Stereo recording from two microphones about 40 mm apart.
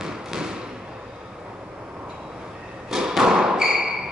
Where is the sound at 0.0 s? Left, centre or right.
Centre.